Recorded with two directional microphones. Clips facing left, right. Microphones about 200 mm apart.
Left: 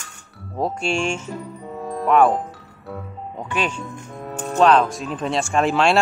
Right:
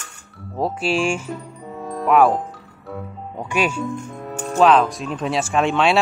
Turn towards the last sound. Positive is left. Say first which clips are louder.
# even
turn(degrees=0)  # may be behind; listen again after turning